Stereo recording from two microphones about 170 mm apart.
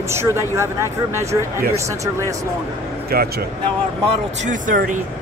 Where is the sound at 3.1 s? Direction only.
65° right (ahead or behind).